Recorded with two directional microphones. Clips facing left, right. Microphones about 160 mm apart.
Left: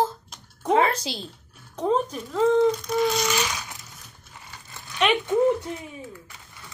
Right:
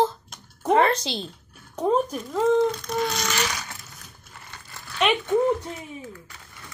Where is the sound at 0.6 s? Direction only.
Centre (ahead or behind).